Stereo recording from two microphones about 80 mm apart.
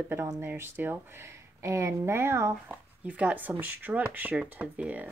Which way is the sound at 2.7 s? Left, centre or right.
Centre.